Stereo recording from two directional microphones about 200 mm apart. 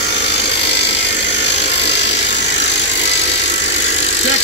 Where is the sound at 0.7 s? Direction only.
60° left (ahead or behind).